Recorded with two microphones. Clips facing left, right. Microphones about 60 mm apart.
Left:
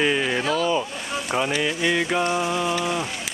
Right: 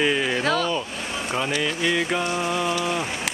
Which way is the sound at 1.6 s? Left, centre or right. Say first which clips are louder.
Left 1 dB; centre.